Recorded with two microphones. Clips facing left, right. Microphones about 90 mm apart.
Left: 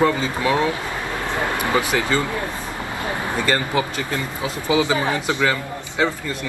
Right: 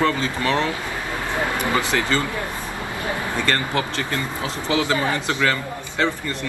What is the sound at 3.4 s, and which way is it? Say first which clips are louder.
A man's voice: left 2 dB; 10° left (ahead or behind).